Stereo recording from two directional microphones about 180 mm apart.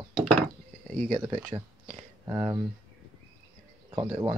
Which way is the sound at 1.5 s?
20° right (ahead or behind).